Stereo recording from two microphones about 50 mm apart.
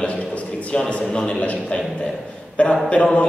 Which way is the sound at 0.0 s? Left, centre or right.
Left.